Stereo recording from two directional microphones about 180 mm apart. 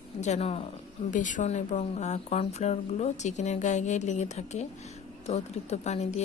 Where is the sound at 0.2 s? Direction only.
40° left (ahead or behind).